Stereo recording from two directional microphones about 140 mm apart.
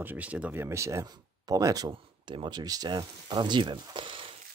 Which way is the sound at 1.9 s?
35° right (ahead or behind).